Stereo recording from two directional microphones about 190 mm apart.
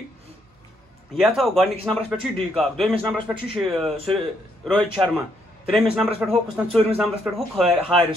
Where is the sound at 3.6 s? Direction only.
Centre (ahead or behind).